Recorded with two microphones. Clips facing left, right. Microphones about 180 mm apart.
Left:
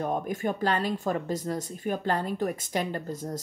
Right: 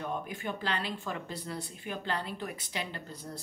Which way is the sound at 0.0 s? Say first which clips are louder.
Left 8 dB; 45° left (ahead or behind).